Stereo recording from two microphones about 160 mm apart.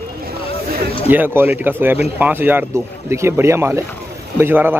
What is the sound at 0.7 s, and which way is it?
Speech, 75° right (ahead or behind).